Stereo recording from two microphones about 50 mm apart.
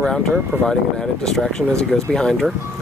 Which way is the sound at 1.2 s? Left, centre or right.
Centre.